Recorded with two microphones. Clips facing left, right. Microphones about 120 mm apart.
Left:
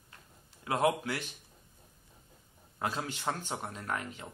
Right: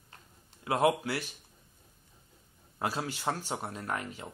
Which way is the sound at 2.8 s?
5° right (ahead or behind).